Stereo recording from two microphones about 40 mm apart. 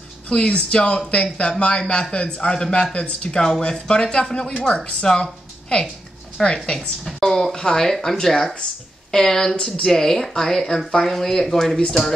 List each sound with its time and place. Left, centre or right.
0.3 s speech: left
7.2 s a woman's voice: centre